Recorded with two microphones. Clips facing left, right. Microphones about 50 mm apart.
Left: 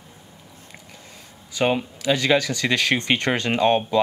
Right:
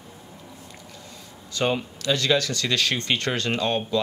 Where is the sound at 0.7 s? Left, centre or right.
Left.